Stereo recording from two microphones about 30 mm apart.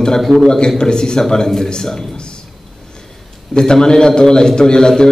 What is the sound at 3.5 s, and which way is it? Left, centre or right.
A man's voice, left.